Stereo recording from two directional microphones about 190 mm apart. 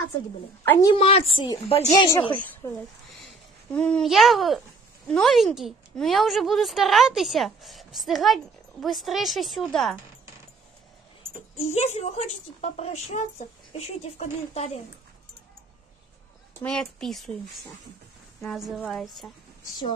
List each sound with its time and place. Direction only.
0.7 s a woman's voice: 20° left (ahead or behind)
3.1 s a sound: 5° left (ahead or behind)
5.0 s a woman's voice: centre (ahead or behind)
11.7 s a woman's voice: 35° left (ahead or behind)
16.6 s a woman's voice: 5° left (ahead or behind)
18.4 s a woman's voice: centre (ahead or behind)